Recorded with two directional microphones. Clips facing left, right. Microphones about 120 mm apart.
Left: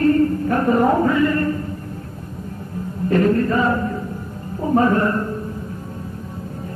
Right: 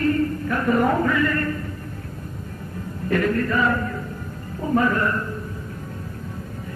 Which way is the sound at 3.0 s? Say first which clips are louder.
Left 5 dB; 30° left (ahead or behind).